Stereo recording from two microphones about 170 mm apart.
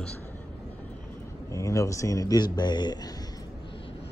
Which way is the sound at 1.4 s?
20° left (ahead or behind).